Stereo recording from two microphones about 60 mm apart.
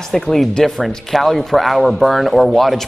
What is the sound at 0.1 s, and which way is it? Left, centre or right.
A man's voice, centre.